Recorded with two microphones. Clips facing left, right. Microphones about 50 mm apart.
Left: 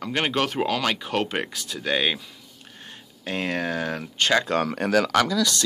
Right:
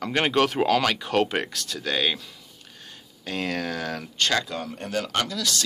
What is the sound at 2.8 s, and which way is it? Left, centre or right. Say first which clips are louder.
Speech: left 3 dB; left.